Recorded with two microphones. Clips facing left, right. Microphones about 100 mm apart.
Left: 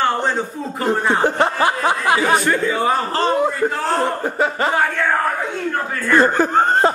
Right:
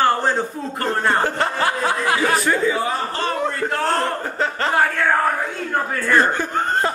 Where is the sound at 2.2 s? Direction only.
Centre (ahead or behind).